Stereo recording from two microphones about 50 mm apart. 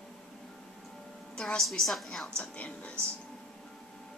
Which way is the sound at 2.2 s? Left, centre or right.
Left.